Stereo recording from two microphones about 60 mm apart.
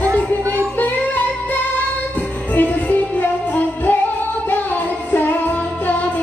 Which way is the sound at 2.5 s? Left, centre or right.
Left.